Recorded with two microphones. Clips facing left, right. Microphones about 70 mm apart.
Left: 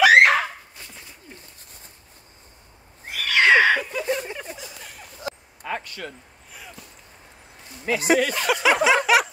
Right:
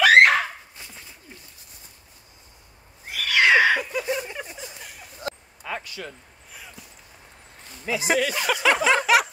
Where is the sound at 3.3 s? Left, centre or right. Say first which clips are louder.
Left 1 dB; left.